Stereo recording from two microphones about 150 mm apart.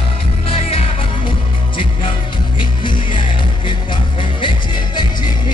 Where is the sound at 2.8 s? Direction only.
35° left (ahead or behind).